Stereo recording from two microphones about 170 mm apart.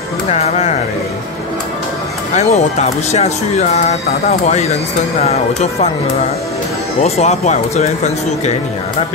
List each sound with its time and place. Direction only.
0.3 s speech: 40° left (ahead or behind)
2.3 s speech: 40° left (ahead or behind)
7.0 s speech: 40° left (ahead or behind)